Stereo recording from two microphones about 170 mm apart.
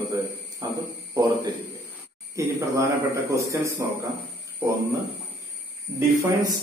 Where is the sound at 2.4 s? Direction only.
15° right (ahead or behind).